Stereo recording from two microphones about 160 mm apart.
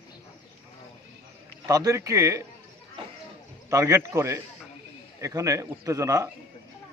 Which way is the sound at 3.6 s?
20° right (ahead or behind).